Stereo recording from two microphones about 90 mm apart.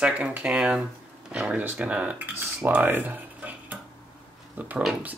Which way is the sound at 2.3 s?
20° right (ahead or behind).